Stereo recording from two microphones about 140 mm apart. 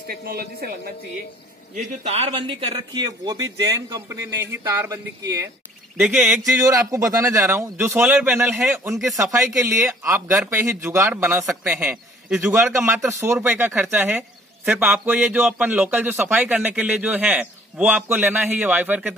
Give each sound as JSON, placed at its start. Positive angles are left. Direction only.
{"t": 0.1, "sound": "speech", "side_deg": -90}
{"t": 1.8, "sound": "speech", "side_deg": -50}
{"t": 5.9, "sound": "speech", "side_deg": -5}
{"t": 6.4, "sound": "speech", "side_deg": -20}
{"t": 9.1, "sound": "speech", "side_deg": -20}